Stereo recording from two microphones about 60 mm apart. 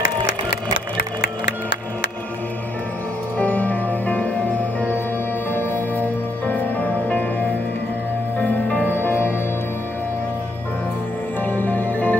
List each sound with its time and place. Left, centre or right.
3.3 s music: left
5.5 s music: left
8.9 s music: left
11.4 s music: left